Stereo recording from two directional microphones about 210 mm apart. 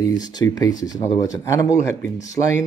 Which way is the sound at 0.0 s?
20° left (ahead or behind).